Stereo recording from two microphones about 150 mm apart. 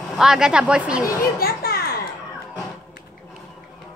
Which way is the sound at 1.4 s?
85° left.